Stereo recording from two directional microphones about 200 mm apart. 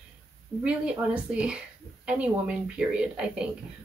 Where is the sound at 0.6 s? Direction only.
5° right (ahead or behind).